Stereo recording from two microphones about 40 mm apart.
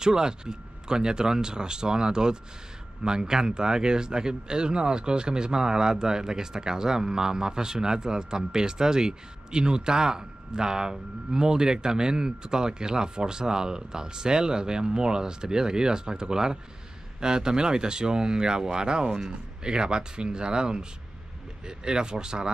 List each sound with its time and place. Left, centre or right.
0.0 s speech: centre